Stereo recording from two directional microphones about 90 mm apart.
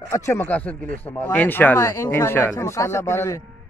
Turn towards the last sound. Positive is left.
turn(degrees=30)  # may be behind; listen again after turning